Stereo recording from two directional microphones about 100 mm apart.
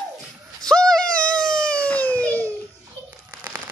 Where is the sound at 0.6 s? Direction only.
5° left (ahead or behind).